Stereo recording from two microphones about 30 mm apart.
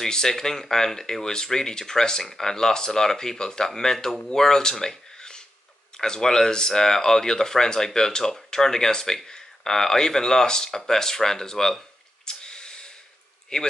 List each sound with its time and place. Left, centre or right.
0.0 s speech: centre
12.3 s a sound: left
13.5 s speech: left